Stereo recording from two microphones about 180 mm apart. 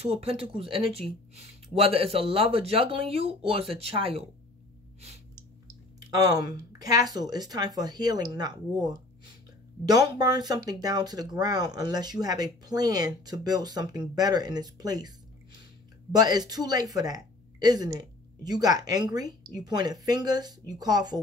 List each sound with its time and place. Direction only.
0.0 s speech: 35° right (ahead or behind)
6.0 s a woman's voice: 20° right (ahead or behind)